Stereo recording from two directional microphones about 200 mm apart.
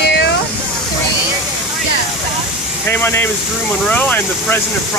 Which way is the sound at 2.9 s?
10° left (ahead or behind).